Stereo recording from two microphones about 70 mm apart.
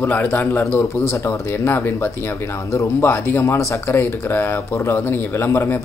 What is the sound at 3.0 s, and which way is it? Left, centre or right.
Speech, left.